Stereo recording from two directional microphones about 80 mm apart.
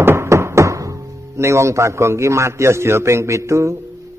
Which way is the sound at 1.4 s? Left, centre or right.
Right.